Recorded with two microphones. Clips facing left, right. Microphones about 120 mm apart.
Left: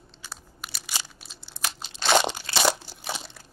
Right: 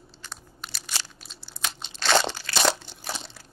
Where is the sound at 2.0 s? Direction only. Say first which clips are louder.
Left 1 dB; 15° left (ahead or behind).